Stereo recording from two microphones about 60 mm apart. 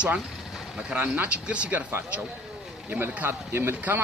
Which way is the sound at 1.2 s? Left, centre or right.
Centre.